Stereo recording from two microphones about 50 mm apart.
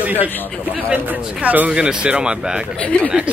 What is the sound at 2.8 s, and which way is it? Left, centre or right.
Speech, left.